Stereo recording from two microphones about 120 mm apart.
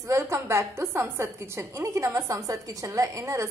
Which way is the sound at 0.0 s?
25° right (ahead or behind).